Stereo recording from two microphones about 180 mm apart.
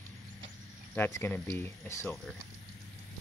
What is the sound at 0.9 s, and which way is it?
Speech, 10° left (ahead or behind).